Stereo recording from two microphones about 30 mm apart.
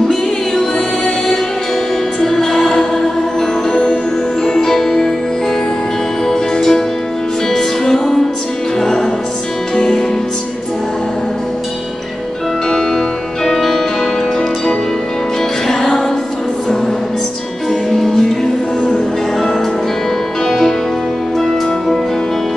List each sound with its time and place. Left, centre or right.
2.1 s music: centre
3.7 s music: left
4.5 s music: centre
6.2 s music: centre
9.8 s music: centre
12.6 s music: centre
17.9 s music: centre
20.4 s music: centre